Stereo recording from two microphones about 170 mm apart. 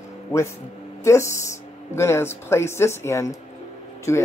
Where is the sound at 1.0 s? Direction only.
15° left (ahead or behind).